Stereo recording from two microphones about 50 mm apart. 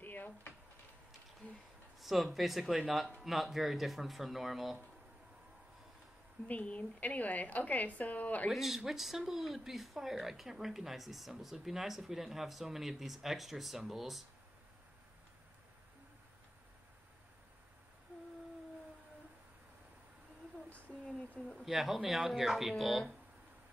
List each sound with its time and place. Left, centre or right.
0.0 s drawer open or close: left
2.0 s speech: centre
6.4 s a woman's voice: left
8.5 s speech: centre
21.2 s speech: centre
21.6 s speech: centre